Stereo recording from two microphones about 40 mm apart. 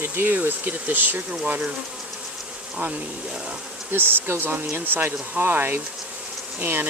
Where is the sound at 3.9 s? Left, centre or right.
Right.